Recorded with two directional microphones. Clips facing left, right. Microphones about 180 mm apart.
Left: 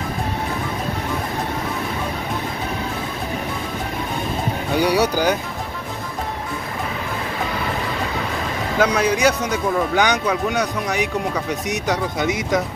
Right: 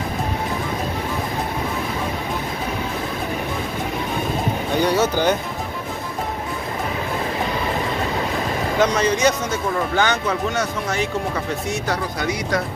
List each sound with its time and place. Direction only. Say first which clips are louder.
4.7 s a man's voice: left 1 dB; 15° left (ahead or behind)
8.7 s a man's voice: left 1 dB; 10° left (ahead or behind)